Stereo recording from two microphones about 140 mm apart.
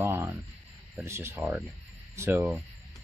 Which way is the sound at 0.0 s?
15° right (ahead or behind).